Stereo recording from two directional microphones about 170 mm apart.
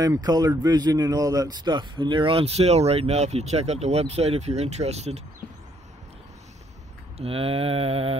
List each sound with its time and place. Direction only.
0.0 s speech: 25° right (ahead or behind); by 5.2 s 40° right (ahead or behind)
7.2 s speech: 35° right (ahead or behind)